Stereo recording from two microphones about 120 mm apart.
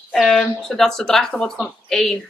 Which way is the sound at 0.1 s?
Centre (ahead or behind).